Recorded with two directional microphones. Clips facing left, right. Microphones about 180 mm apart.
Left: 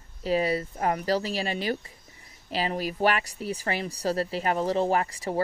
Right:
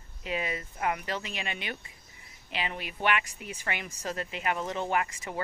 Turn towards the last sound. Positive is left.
turn(degrees=35)  # may be behind; listen again after turning